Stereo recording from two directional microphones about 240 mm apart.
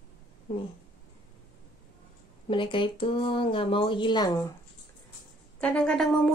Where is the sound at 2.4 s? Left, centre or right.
Centre.